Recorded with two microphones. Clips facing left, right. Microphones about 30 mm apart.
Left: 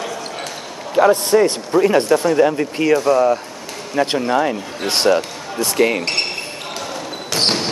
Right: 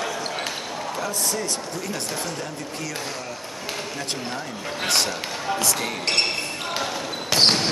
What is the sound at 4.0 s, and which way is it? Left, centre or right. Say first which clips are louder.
Speech: left 13 dB; left.